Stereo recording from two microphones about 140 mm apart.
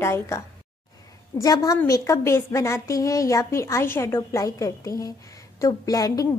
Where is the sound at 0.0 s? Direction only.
20° left (ahead or behind).